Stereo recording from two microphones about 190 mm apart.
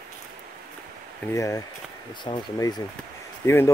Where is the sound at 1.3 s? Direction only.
15° left (ahead or behind).